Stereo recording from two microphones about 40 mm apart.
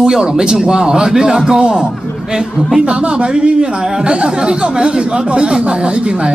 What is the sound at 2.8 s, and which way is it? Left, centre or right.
Speech, right.